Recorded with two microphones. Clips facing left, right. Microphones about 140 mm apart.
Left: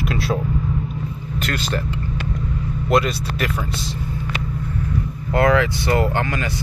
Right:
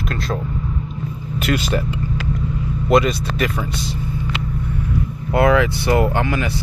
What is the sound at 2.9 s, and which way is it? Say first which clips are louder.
Speech: right 3 dB; centre (ahead or behind).